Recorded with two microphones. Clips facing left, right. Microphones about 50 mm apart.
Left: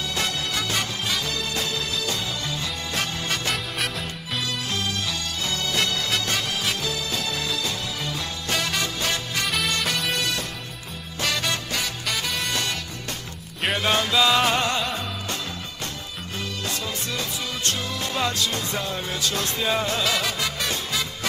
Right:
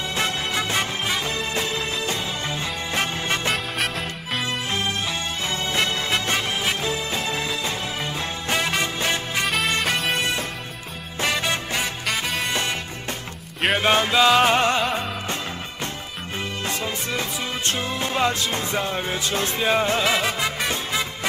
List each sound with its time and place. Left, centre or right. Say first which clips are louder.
0.1 s music: right 3 dB; right
3.5 s music: right 3 dB; centre
4.4 s music: right 2 dB; right
9.9 s music: right 3 dB; centre
11.1 s music: right 2 dB; right
12.1 s music: right 2 dB; centre
12.4 s music: right 2 dB; right
13.7 s music: right 3 dB; right
16.6 s music: right 3 dB; right